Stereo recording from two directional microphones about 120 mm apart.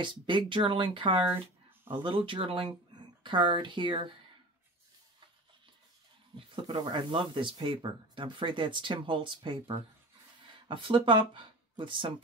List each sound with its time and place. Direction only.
0.0 s speech: 40° right (ahead or behind)
6.3 s speech: 45° right (ahead or behind)